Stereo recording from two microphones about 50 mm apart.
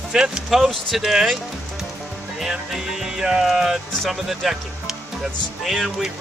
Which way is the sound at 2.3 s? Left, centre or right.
Centre.